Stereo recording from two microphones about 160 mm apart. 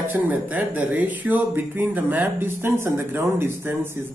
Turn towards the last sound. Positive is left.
turn(degrees=-15)  # may be behind; listen again after turning